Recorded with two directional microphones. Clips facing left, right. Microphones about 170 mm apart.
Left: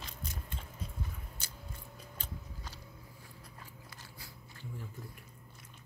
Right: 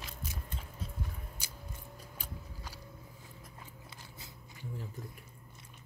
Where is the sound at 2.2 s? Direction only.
10° right (ahead or behind).